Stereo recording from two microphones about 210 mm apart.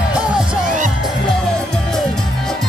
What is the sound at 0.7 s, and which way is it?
Music, 35° right (ahead or behind).